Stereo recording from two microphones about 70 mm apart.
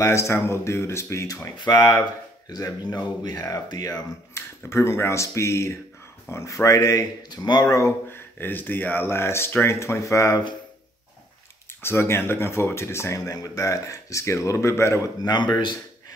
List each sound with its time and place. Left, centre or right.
0.0 s speech: left
1.6 s speech: left
4.3 s speech: left
7.2 s speech: left
8.1 s speech: left
11.8 s speech: left
15.2 s speech: left